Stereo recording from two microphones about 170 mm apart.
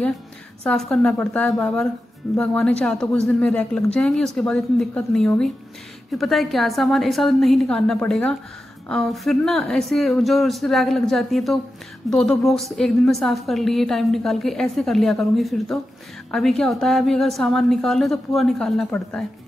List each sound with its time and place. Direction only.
0.7 s a woman's voice: 5° left (ahead or behind)